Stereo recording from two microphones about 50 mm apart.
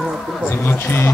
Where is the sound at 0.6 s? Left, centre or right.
Left.